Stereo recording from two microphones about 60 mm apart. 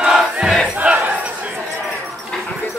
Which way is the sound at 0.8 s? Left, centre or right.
Right.